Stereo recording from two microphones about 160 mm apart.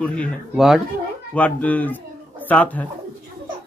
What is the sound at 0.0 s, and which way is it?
Speech, 5° left (ahead or behind).